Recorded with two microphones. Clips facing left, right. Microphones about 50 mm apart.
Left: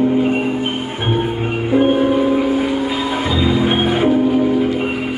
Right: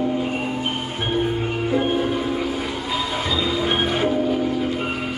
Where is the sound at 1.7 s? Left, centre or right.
Left.